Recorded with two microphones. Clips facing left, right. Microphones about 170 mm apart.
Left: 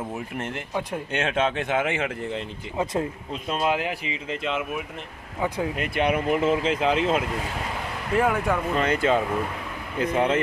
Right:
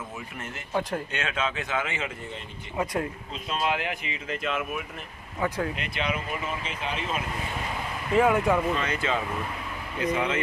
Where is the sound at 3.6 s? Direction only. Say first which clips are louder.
Left 3 dB; 35° left (ahead or behind); by 5.6 s 20° left (ahead or behind).